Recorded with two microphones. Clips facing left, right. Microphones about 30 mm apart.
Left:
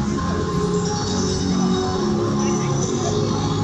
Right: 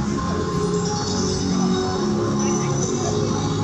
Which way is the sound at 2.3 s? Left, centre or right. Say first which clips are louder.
Left 1 dB; left.